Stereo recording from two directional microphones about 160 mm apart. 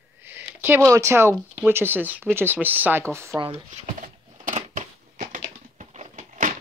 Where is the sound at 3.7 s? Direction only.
45° right (ahead or behind).